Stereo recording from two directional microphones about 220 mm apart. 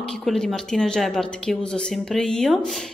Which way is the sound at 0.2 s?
Centre (ahead or behind).